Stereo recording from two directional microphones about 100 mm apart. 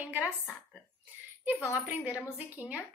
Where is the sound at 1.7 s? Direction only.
15° right (ahead or behind).